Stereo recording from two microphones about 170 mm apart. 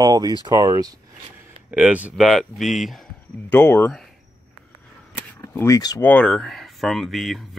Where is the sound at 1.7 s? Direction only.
10° right (ahead or behind).